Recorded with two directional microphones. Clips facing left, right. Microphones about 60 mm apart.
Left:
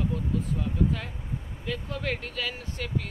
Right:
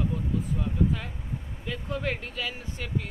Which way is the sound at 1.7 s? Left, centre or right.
Centre.